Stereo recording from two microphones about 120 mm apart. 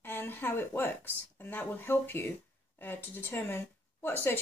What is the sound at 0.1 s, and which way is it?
Speech, 20° left (ahead or behind).